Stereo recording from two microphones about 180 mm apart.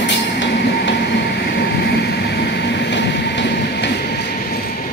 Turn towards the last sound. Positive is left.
turn(degrees=70)  # may be behind; listen again after turning